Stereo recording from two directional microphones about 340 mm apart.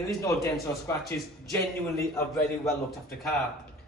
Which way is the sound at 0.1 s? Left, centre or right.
Centre.